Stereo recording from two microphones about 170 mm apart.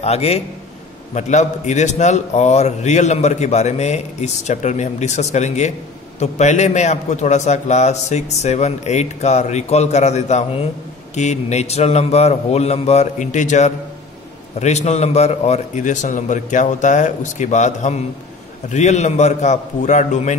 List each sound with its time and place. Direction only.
0.0 s a man's voice: 40° left (ahead or behind)